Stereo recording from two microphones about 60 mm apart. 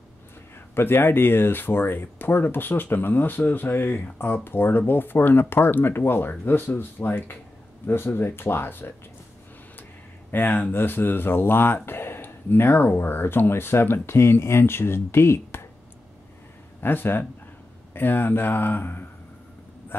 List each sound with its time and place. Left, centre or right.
0.7 s speech: left
10.3 s speech: left
16.8 s speech: left